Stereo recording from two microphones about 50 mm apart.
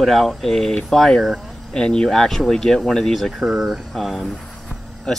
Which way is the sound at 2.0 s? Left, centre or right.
Centre.